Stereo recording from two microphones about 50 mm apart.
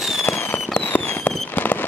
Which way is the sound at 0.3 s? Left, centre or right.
Left.